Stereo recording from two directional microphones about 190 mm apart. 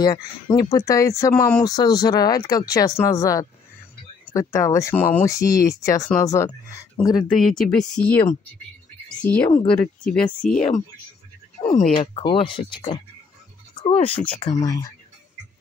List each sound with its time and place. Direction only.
0.0 s speech: 20° left (ahead or behind)
7.3 s speech: centre (ahead or behind)
9.5 s speech: 30° left (ahead or behind)